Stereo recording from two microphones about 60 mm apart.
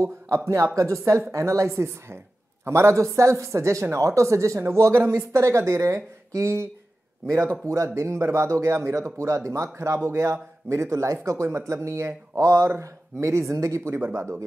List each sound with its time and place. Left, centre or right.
1.0 s speech: right
14.0 s speech: right